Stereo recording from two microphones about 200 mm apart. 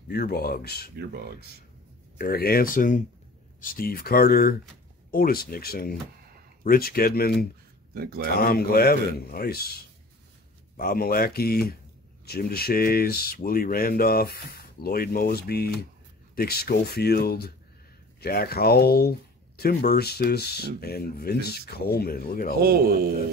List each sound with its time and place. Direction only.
0.1 s speech: 55° left (ahead or behind)
0.9 s speech: 55° right (ahead or behind)
2.1 s speech: 50° left (ahead or behind)
7.9 s speech: 50° right (ahead or behind)
8.4 s speech: 50° left (ahead or behind)
22.6 s speech: 50° right (ahead or behind)